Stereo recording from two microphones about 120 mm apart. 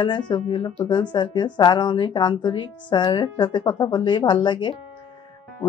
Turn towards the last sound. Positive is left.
turn(degrees=40)  # may be behind; listen again after turning